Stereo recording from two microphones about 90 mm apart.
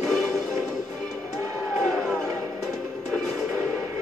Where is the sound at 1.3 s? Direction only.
30° right (ahead or behind).